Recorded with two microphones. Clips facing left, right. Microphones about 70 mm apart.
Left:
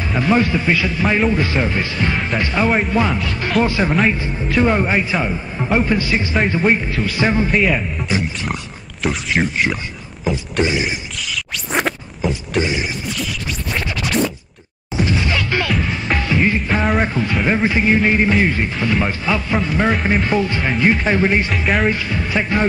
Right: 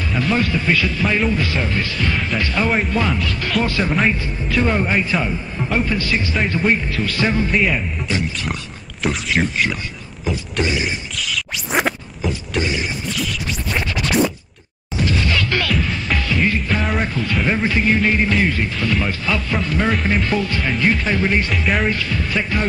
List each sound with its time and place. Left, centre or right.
0.1 s speech: centre
2.6 s a man's voice: centre
7.5 s speech: centre
8.1 s a man's voice: centre
9.0 s speech: centre
10.6 s speech: centre
11.1 s a sound: centre
12.8 s scratch: centre
14.0 s music: centre
16.7 s a sound: centre
17.0 s speech: left
17.3 s a man's voice: centre
21.5 s a man's voice: centre
21.9 s speech: centre